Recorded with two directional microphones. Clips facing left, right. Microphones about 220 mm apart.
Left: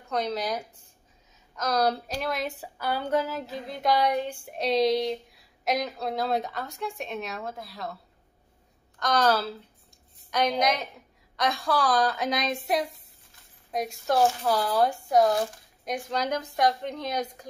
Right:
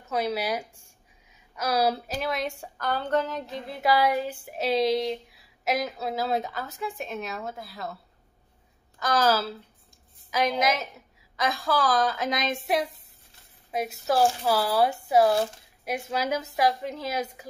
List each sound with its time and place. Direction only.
0.0 s a woman's voice: 5° right (ahead or behind)
9.0 s a woman's voice: 5° right (ahead or behind)